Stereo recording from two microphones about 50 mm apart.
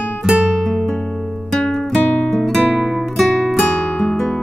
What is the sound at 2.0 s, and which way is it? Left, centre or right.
Guitar, centre.